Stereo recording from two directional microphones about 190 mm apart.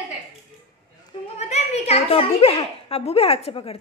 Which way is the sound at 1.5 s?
35° left (ahead or behind).